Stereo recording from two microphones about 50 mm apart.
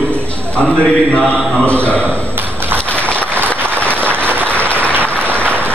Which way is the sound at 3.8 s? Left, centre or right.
Right.